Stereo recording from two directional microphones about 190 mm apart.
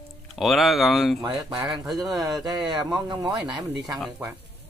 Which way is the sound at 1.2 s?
20° right (ahead or behind).